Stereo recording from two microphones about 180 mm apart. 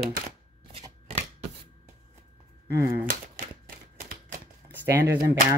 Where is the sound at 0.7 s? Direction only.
30° right (ahead or behind).